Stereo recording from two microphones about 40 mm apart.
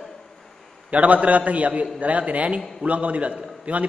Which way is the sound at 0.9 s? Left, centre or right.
Right.